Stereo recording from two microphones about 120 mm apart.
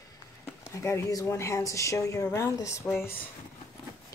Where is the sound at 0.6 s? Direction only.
25° left (ahead or behind).